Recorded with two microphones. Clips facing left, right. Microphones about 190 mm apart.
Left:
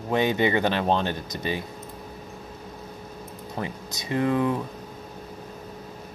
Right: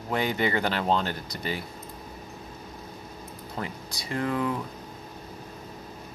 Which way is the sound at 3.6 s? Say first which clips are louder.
Left 3 dB; 20° left (ahead or behind).